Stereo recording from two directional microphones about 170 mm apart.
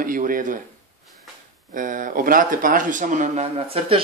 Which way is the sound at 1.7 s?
50° right (ahead or behind).